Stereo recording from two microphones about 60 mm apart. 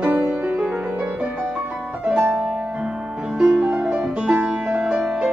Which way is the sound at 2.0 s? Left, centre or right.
Centre.